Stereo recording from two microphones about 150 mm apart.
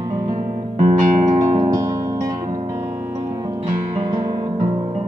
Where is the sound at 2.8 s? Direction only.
20° right (ahead or behind); by 5.0 s 40° right (ahead or behind).